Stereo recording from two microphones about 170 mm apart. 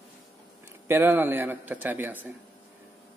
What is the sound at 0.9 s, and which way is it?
A man's voice, 15° right (ahead or behind).